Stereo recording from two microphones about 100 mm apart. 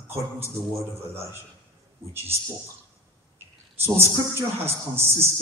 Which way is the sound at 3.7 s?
25° right (ahead or behind).